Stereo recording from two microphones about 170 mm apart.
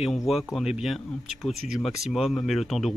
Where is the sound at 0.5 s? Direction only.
Centre (ahead or behind).